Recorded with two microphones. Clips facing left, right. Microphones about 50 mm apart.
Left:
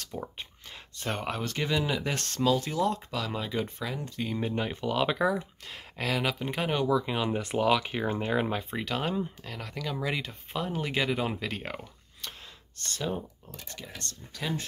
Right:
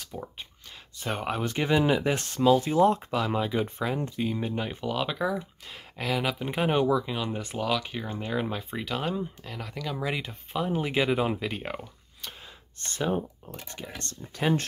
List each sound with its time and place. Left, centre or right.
0.1 s speech: centre
0.9 s speech: centre
1.4 s speech: right
3.3 s speech: centre
3.6 s speech: right
4.2 s speech: centre
7.1 s speech: centre
8.5 s speech: centre
12.7 s speech: right